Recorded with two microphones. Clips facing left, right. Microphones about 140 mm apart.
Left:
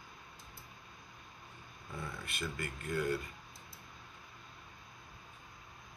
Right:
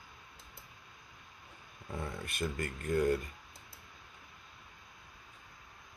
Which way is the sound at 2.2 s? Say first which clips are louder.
Right 5 dB; 45° right (ahead or behind).